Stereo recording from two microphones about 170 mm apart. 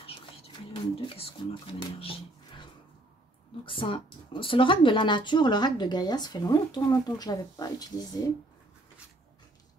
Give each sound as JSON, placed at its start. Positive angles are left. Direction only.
{"t": 0.0, "sound": "speech", "side_deg": 35}
{"t": 3.6, "sound": "speech", "side_deg": 30}